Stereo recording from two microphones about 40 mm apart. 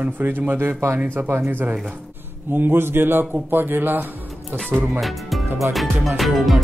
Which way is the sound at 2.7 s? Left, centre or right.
Right.